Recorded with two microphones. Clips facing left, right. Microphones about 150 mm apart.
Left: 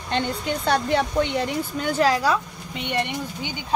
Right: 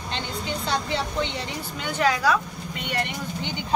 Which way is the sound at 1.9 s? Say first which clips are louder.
Left 2 dB; 35° left (ahead or behind).